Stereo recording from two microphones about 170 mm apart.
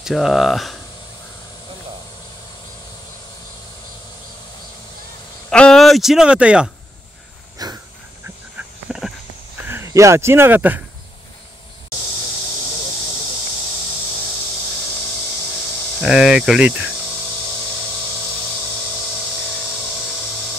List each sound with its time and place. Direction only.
0.0 s speech: centre (ahead or behind)
5.5 s speech: 5° left (ahead or behind)
7.5 s dog: 20° right (ahead or behind)
8.5 s a sound: 5° right (ahead or behind)
9.7 s speech: 15° right (ahead or behind)
16.0 s speech: centre (ahead or behind)
19.4 s a sound: centre (ahead or behind)